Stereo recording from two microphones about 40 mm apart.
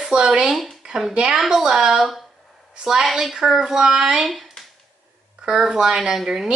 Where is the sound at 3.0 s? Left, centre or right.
Centre.